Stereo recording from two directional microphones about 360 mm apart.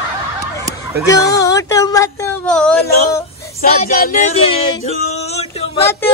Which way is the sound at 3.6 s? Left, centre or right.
Left.